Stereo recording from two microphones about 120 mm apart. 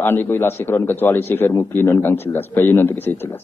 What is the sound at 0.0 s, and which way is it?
A man's voice, 20° left (ahead or behind).